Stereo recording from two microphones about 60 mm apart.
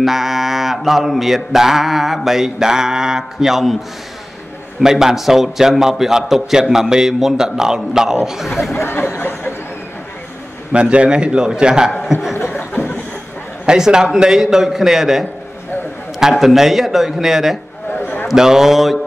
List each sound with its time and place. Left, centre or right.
0.0 s mantra: centre
4.7 s a man's voice: centre
8.7 s a sound: left
10.7 s a man's voice: centre
12.1 s chuckle: centre
12.4 s a sound: left
13.7 s a man's voice: centre
16.2 s mantra: centre
17.9 s a sound: left
18.3 s mantra: centre